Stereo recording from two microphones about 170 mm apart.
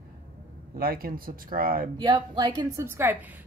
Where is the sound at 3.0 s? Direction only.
10° right (ahead or behind).